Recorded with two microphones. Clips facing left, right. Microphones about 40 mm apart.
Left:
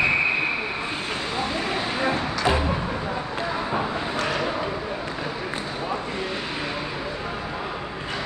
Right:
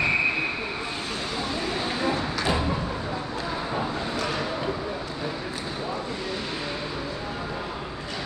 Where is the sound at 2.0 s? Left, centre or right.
Left.